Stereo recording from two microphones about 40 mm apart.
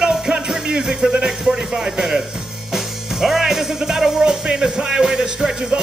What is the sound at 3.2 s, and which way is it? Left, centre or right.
Music, centre.